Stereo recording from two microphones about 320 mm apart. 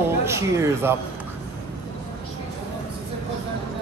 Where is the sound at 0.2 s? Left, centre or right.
Centre.